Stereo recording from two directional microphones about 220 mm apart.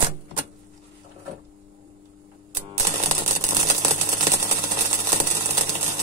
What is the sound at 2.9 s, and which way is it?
Typewriter, 30° right (ahead or behind).